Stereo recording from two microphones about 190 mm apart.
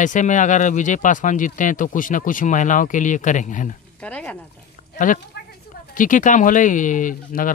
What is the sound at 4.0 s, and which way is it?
Speech, 5° left (ahead or behind).